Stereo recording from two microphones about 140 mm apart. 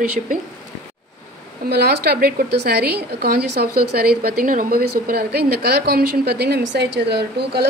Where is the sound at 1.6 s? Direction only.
90° right.